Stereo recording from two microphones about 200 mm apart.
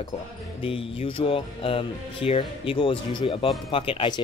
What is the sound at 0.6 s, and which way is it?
Speech, 25° left (ahead or behind).